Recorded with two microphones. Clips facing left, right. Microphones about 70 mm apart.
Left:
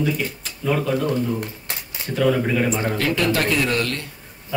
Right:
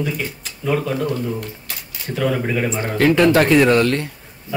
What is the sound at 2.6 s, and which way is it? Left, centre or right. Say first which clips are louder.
A man's voice: right 4 dB; right.